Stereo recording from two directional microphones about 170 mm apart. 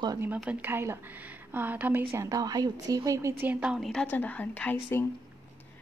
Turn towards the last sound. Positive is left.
turn(degrees=10)  # may be behind; listen again after turning